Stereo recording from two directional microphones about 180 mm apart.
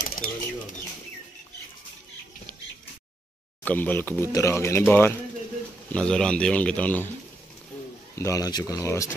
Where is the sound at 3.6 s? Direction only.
10° left (ahead or behind).